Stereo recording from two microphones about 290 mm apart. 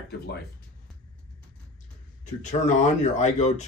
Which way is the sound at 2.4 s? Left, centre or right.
Left.